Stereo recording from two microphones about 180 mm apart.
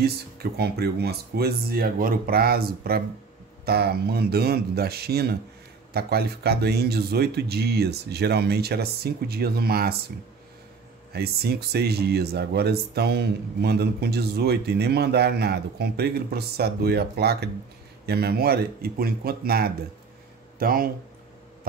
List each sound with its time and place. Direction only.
0.0 s speech: 60° right (ahead or behind)
11.1 s speech: 60° right (ahead or behind)